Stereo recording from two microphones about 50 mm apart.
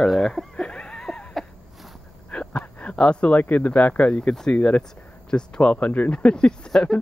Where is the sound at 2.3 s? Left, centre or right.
Left.